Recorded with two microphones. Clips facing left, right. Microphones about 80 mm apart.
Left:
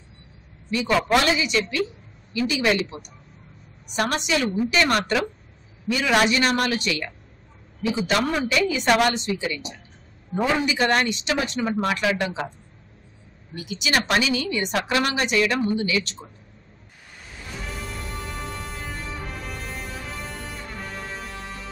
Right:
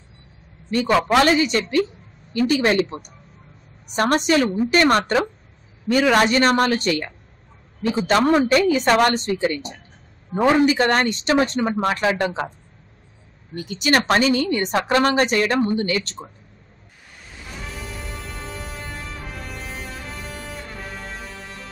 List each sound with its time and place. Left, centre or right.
0.7 s speech: right
13.6 s speech: right
18.0 s music: centre